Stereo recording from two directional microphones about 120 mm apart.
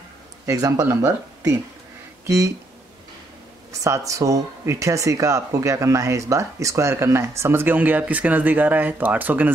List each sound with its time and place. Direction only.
0.5 s speech: 30° right (ahead or behind)
3.7 s speech: 25° right (ahead or behind)